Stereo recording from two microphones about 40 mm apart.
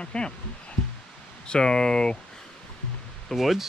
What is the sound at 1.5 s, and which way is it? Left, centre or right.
Speech, centre.